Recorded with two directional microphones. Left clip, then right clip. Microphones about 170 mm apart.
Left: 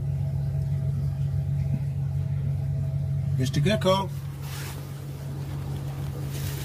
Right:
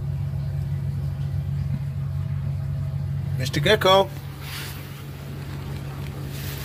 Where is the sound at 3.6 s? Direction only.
5° right (ahead or behind).